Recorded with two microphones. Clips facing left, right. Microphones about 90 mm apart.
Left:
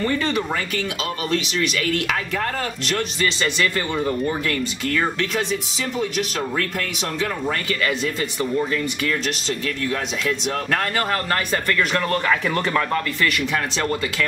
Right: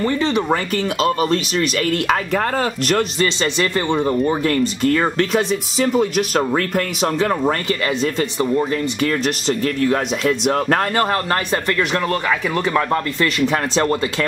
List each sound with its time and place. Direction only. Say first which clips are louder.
0.0 s speech: right 4 dB; 20° right (ahead or behind)
1.0 s speech: right 8 dB; 40° right (ahead or behind)
3.4 s speech: right 3 dB; 25° right (ahead or behind)
9.8 s speech: right 5 dB; 55° right (ahead or behind)
10.5 s speech: right 5 dB; 35° right (ahead or behind)
11.9 s speech: right 1 dB; 10° right (ahead or behind)
12.7 s speech: right 3 dB; 25° right (ahead or behind)
13.5 s speech: right 5 dB; 40° right (ahead or behind)